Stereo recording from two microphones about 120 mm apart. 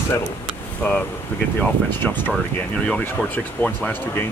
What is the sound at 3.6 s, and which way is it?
Speech, 15° left (ahead or behind).